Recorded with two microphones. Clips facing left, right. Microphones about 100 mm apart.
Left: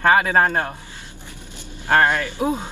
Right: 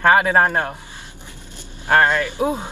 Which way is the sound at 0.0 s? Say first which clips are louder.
Right 1 dB; 20° right (ahead or behind).